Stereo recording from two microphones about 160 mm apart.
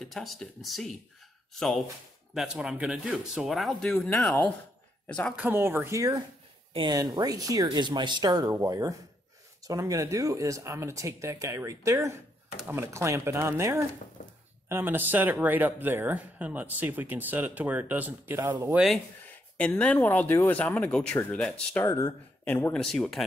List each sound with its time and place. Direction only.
0.0 s speech: centre (ahead or behind)
5.3 s speech: 10° right (ahead or behind)
19.5 s speech: 10° left (ahead or behind)